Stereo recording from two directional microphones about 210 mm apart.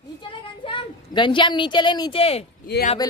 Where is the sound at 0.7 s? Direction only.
25° left (ahead or behind).